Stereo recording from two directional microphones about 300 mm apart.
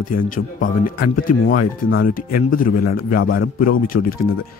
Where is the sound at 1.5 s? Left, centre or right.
Left.